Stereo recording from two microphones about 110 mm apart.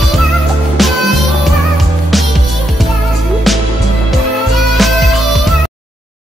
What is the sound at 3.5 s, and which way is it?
Music, centre (ahead or behind).